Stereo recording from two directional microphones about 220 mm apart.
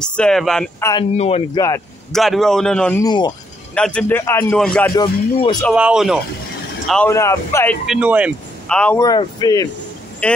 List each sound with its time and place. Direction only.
0.0 s speech: 5° left (ahead or behind)
1.1 s speech: 30° left (ahead or behind)
2.1 s speech: centre (ahead or behind)
3.0 s a man's voice: 15° left (ahead or behind)
3.7 s a man's voice: 5° left (ahead or behind)
4.9 s speech: 20° left (ahead or behind)
5.6 s speech: centre (ahead or behind)
6.9 s a man's voice: 10° left (ahead or behind)
7.8 s speech: 5° right (ahead or behind)
8.7 s a man's voice: 5° left (ahead or behind)
9.0 s a man's voice: 15° left (ahead or behind)
10.2 s speech: 5° left (ahead or behind)